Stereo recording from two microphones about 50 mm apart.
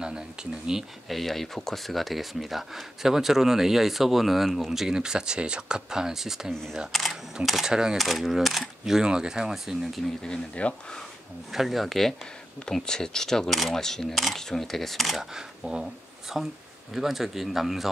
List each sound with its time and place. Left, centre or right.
0.0 s speech: centre
1.0 s speech: centre
7.6 s speech: centre
8.0 s speech: centre
10.5 s speech: left
11.5 s speech: centre
15.3 s speech: centre